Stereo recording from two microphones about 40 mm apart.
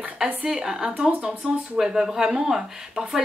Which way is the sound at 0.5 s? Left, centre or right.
Centre.